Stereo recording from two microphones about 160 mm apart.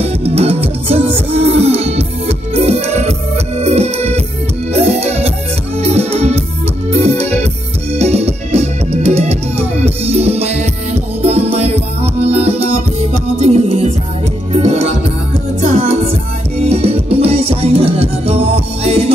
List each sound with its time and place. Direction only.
0.0 s music: 40° right (ahead or behind)
6.9 s keyboard: 40° right (ahead or behind)
7.9 s music: 40° right (ahead or behind)